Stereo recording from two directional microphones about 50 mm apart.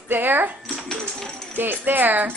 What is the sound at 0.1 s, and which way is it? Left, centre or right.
Speech, right.